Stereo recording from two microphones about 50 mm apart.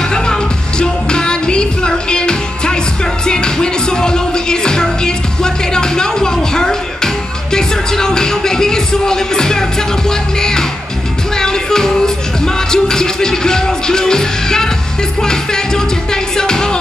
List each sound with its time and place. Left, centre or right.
0.1 s music: centre